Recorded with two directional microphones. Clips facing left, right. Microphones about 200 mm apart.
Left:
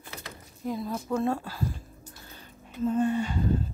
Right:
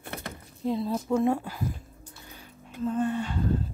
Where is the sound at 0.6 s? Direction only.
25° right (ahead or behind).